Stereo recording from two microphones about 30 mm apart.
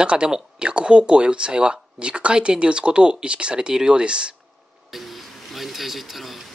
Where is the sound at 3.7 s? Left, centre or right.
Right.